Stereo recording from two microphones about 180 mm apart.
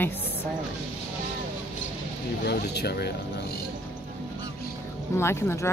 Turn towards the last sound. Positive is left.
turn(degrees=15)  # may be behind; listen again after turning